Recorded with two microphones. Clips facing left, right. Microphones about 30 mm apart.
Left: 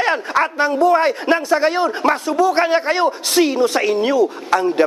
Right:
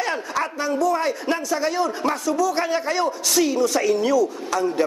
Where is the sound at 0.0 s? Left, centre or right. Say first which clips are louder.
Left 7 dB; left.